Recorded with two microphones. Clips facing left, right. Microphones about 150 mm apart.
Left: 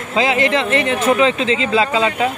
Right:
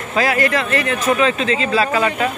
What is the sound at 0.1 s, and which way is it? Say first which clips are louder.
Speech: left 1 dB; 20° left (ahead or behind).